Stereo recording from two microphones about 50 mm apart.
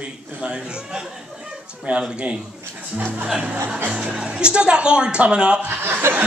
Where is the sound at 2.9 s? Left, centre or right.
Right.